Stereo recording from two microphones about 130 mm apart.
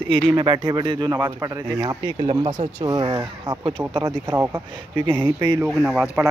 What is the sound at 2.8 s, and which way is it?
Speech, 35° right (ahead or behind).